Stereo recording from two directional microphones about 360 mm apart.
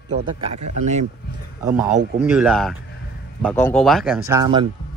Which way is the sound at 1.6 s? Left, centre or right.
Centre.